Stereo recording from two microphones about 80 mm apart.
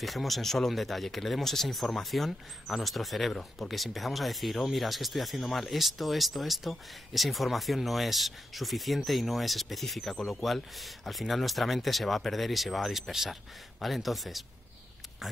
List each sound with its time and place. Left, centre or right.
0.0 s speech: centre